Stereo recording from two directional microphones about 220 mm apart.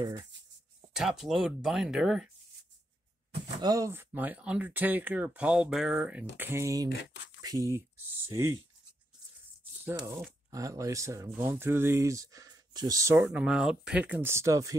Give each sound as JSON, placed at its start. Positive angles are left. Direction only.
{"t": 0.9, "sound": "speech", "side_deg": 0}
{"t": 3.6, "sound": "speech", "side_deg": -15}
{"t": 9.8, "sound": "speech", "side_deg": -15}